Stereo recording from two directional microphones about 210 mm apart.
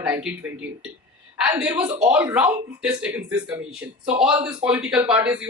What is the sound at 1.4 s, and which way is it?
Speech, 5° right (ahead or behind).